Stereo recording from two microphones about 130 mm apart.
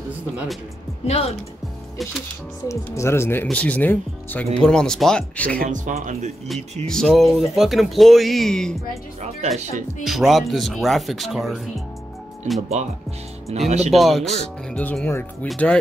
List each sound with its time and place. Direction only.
1.0 s speech: 50° left (ahead or behind)
2.7 s speech: 20° left (ahead or behind)
5.6 s speech: 75° right (ahead or behind)
6.4 s speech: centre (ahead or behind)
9.4 s speech: 55° right (ahead or behind)
10.0 s speech: centre (ahead or behind)
12.5 s speech: 60° right (ahead or behind)
13.8 s speech: centre (ahead or behind)